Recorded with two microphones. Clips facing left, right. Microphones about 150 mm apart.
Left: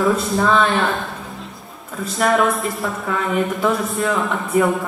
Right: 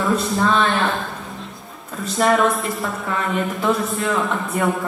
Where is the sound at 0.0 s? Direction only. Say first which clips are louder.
Left 2 dB; centre (ahead or behind).